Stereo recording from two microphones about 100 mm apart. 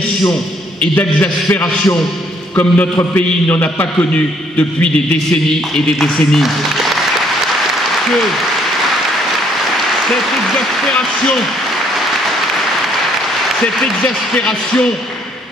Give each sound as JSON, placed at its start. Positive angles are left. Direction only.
{"t": 0.9, "sound": "a man's voice", "side_deg": 15}
{"t": 5.9, "sound": "speech", "side_deg": 0}
{"t": 13.7, "sound": "speech", "side_deg": 5}